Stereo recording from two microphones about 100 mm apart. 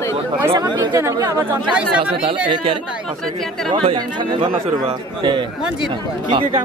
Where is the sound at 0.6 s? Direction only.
45° right (ahead or behind).